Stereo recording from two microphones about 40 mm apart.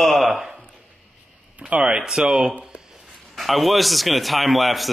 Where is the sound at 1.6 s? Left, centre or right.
Right.